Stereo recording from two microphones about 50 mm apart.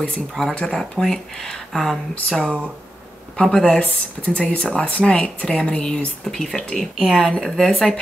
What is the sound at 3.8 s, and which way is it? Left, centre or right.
Speech, left.